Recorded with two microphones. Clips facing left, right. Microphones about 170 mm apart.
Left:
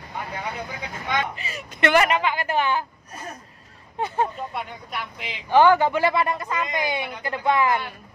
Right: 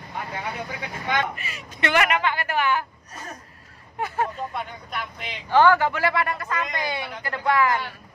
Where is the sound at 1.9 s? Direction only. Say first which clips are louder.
Left 2 dB; 30° left (ahead or behind).